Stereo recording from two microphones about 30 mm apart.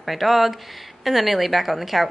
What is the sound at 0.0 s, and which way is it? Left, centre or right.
A woman's voice, centre.